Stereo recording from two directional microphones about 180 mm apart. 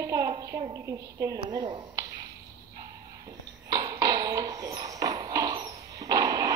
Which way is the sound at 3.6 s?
20° right (ahead or behind).